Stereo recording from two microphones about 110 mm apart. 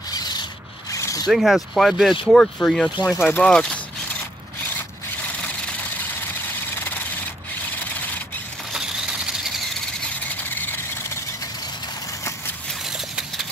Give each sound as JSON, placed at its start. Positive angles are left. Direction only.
{"t": 0.1, "sound": "rub", "side_deg": 40}
{"t": 0.9, "sound": "zipper", "side_deg": 30}
{"t": 1.2, "sound": "speech", "side_deg": -5}
{"t": 6.2, "sound": "vehicle", "side_deg": 20}
{"t": 8.7, "sound": "mechanisms", "side_deg": -5}
{"t": 10.5, "sound": "vehicle", "side_deg": 20}
{"t": 12.9, "sound": "a sound", "side_deg": -5}